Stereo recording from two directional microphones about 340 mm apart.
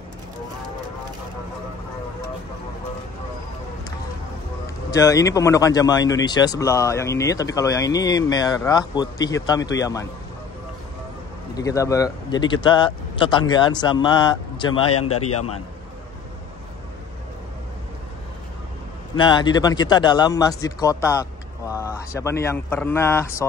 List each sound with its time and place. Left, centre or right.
4.9 s speech: centre
11.5 s speech: centre
14.9 s speech: left
19.1 s speech: centre